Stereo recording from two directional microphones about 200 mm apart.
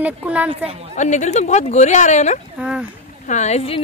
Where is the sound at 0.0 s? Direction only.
5° right (ahead or behind).